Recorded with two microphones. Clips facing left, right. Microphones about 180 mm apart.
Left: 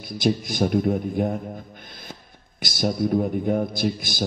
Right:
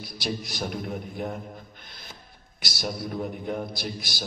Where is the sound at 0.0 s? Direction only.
50° left (ahead or behind).